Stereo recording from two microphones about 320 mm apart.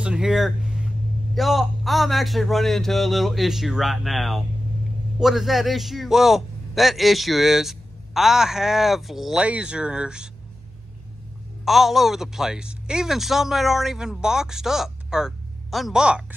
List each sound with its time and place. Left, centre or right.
0.0 s a sound: centre
1.3 s a man's voice: centre
11.6 s a man's voice: centre